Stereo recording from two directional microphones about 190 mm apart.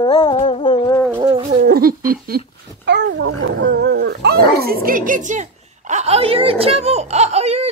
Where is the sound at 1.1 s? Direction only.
25° right (ahead or behind).